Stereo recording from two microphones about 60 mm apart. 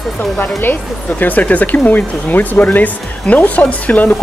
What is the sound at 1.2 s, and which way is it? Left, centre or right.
Speech, left.